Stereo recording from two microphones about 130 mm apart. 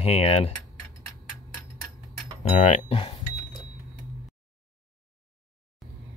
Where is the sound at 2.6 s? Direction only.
60° left (ahead or behind).